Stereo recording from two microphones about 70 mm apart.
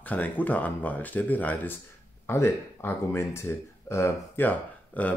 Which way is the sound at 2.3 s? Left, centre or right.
Left.